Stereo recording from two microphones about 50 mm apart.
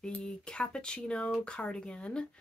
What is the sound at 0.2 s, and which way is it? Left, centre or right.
Speech, centre.